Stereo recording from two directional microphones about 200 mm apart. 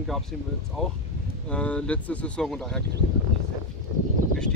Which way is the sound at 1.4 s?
5° left (ahead or behind).